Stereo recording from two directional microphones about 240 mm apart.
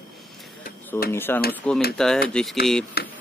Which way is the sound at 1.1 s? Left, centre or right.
Centre.